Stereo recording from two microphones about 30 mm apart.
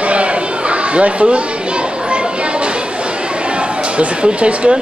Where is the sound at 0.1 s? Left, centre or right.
Right.